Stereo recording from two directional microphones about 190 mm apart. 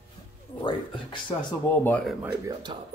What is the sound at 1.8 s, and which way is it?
Speech, 10° left (ahead or behind).